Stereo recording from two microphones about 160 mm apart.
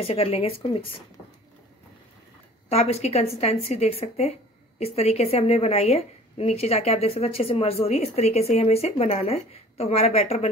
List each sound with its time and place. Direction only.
0.0 s a woman's voice: 40° left (ahead or behind)
2.7 s a woman's voice: 40° left (ahead or behind)